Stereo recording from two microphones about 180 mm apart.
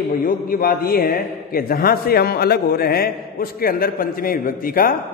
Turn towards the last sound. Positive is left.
turn(degrees=55)  # may be behind; listen again after turning